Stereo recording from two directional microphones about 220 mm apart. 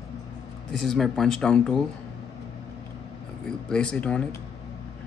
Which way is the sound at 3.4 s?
5° left (ahead or behind).